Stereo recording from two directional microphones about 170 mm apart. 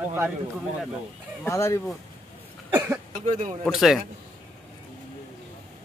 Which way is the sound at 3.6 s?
Centre (ahead or behind).